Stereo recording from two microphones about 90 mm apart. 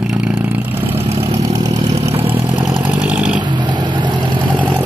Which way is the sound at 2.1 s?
90° right.